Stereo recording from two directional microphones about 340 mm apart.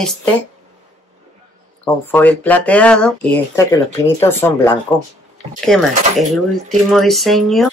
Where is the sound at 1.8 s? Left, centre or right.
Centre.